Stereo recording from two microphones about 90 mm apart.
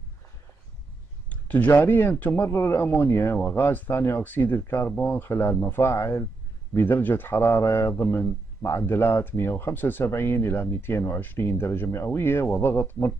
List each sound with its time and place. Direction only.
1.3 s a sound: 15° left (ahead or behind)
1.7 s speech: 20° left (ahead or behind)
2.5 s speech: 30° left (ahead or behind)
7.9 s speech: 15° left (ahead or behind)
8.2 s speech: 30° left (ahead or behind)